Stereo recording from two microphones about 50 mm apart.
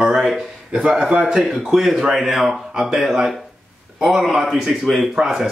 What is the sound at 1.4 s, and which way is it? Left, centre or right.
A man's voice, centre.